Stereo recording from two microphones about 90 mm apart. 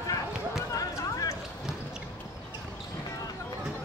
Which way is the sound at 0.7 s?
40° left (ahead or behind).